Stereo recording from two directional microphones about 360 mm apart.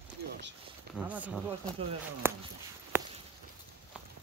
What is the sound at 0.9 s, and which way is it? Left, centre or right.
Speech, centre.